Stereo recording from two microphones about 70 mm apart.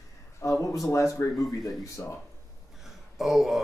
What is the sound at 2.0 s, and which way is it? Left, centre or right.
Speech, left.